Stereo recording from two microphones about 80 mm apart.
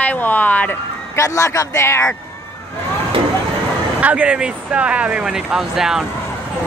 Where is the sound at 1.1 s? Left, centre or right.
Left.